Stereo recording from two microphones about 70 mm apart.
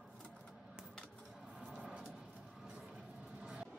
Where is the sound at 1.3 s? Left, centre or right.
Centre.